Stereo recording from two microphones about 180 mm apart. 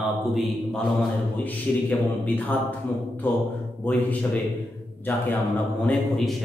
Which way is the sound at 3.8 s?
10° left (ahead or behind).